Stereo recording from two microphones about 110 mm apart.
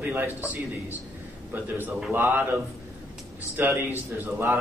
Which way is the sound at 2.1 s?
20° right (ahead or behind).